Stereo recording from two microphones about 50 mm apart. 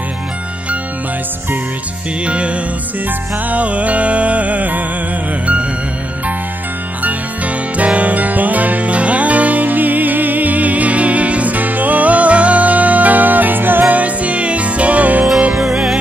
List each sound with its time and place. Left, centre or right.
2.2 s music: right
7.7 s music: right
15.5 s music: centre